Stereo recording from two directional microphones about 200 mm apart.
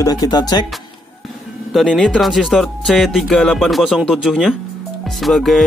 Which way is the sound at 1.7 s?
Centre (ahead or behind).